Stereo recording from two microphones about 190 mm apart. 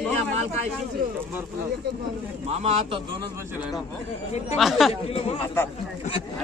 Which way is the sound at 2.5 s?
35° right (ahead or behind).